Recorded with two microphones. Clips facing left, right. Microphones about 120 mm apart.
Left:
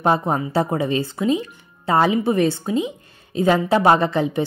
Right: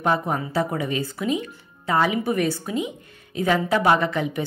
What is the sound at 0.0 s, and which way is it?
A woman's voice, 30° left (ahead or behind).